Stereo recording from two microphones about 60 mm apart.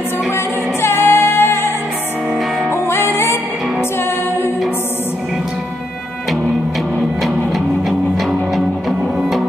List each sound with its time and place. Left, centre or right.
0.8 s music: left
2.7 s music: left